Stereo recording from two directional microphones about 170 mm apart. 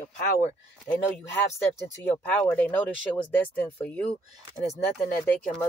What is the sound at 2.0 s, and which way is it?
Speech, 10° left (ahead or behind).